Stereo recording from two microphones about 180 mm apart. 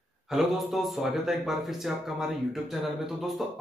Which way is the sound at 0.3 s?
Centre (ahead or behind).